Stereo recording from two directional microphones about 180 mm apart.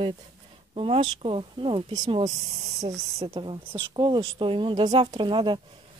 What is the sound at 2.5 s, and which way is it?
Speech, 35° right (ahead or behind).